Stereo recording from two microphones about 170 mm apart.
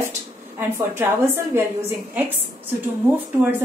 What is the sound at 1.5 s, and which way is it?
Speech, 10° right (ahead or behind).